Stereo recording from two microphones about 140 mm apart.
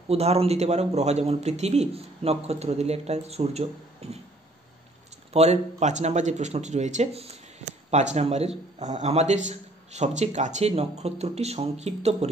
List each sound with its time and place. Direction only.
0.1 s a man's voice: 45° right (ahead or behind)
5.3 s a man's voice: 50° right (ahead or behind)